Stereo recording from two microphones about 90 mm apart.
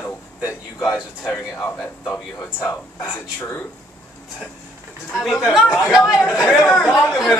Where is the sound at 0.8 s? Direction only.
5° right (ahead or behind).